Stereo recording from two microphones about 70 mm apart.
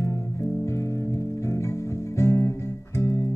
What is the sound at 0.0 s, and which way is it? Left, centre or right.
Music, left.